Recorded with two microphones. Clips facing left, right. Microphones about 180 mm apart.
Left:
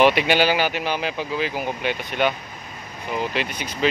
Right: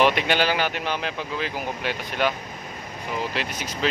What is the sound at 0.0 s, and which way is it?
Speech, 5° left (ahead or behind).